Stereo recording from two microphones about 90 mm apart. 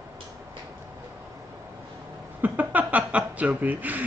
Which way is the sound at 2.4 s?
20° right (ahead or behind).